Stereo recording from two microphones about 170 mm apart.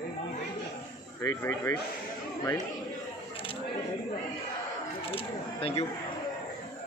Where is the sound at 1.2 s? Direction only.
15° left (ahead or behind).